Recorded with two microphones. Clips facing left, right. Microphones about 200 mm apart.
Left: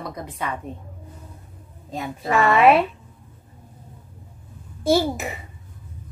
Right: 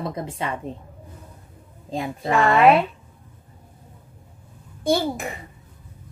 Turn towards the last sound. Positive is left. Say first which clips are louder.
# left 2 dB
turn(degrees=5)  # may be behind; listen again after turning